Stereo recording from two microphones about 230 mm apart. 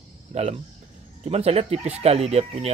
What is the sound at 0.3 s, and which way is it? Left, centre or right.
Speech, right.